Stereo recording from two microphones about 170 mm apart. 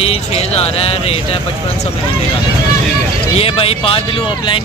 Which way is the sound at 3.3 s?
35° left (ahead or behind).